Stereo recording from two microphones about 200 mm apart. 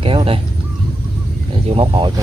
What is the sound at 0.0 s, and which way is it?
Speech, 25° right (ahead or behind).